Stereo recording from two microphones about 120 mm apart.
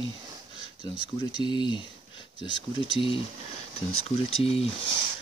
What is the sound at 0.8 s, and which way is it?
Speech, 40° left (ahead or behind).